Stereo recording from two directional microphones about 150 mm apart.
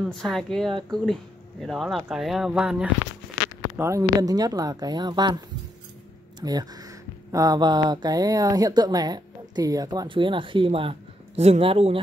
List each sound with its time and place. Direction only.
0.0 s speech: centre (ahead or behind)
3.7 s speech: 20° right (ahead or behind)
6.4 s speech: 25° right (ahead or behind)